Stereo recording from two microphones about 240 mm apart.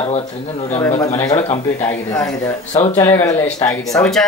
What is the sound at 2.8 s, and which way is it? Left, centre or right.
Speech, centre.